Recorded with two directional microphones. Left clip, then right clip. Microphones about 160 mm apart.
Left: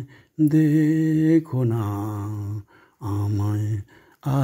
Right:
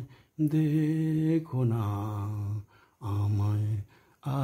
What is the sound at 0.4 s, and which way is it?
Mantra, 25° left (ahead or behind).